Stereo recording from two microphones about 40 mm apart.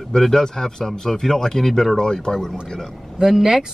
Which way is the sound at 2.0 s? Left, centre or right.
Centre.